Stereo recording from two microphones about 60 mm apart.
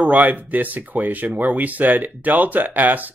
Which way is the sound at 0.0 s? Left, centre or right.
Right.